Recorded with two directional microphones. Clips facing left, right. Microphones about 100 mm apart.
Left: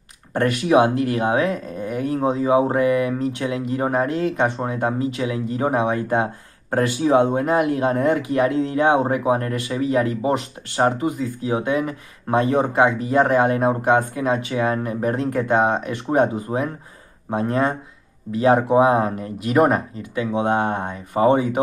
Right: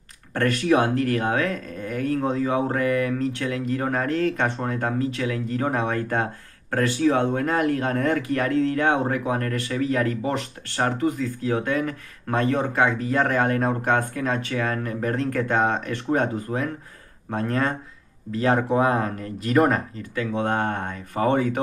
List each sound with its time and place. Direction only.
0.3 s speech: 15° left (ahead or behind)